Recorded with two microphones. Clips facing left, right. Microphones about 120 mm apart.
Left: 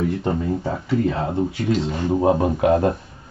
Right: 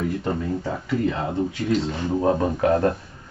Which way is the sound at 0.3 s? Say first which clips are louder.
Left 3 dB; 15° left (ahead or behind).